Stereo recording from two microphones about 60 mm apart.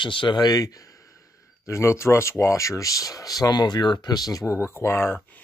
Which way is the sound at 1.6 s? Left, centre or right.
Left.